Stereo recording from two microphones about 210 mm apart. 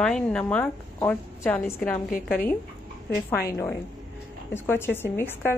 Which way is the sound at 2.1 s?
45° left (ahead or behind).